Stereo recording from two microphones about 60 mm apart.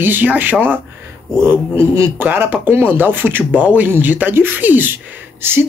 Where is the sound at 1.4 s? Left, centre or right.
Right.